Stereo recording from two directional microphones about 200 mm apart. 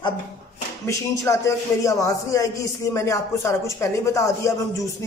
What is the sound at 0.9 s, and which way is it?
A man's voice, 15° left (ahead or behind).